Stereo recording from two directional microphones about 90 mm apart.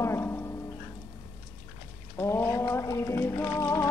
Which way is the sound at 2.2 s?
30° left (ahead or behind).